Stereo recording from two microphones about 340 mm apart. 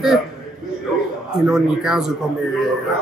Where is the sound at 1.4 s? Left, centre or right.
Centre.